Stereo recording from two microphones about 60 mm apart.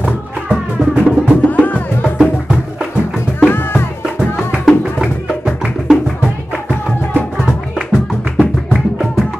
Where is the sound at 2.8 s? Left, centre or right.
Centre.